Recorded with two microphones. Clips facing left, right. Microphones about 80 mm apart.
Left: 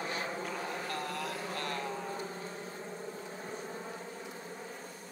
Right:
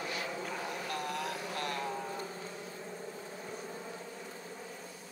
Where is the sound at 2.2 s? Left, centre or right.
Left.